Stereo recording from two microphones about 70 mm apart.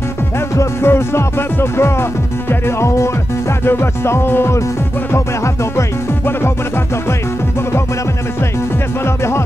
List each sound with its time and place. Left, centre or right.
0.6 s music: left
5.1 s speech: left
9.0 s music: left